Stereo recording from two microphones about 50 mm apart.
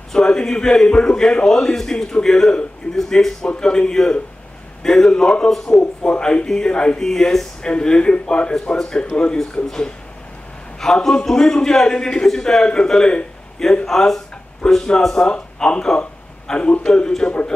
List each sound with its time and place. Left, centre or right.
0.1 s a man's voice: centre
3.4 s a man's voice: centre